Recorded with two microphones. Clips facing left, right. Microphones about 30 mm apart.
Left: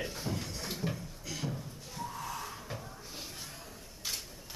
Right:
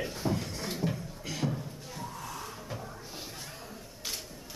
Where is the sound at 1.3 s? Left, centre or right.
Right.